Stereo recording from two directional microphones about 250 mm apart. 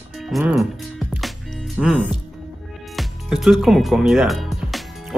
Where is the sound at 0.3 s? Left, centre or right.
Centre.